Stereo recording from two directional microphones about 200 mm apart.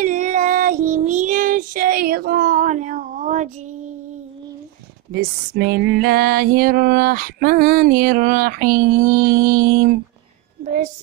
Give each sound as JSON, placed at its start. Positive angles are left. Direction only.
{"t": 0.0, "sound": "child singing", "side_deg": -40}
{"t": 5.1, "sound": "music", "side_deg": -50}
{"t": 10.6, "sound": "a child's voice", "side_deg": -35}